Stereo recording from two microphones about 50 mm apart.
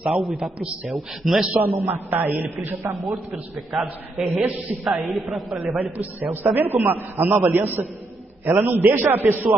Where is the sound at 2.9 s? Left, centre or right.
Centre.